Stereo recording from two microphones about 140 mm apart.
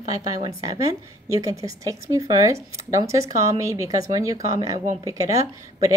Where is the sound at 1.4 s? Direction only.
25° right (ahead or behind).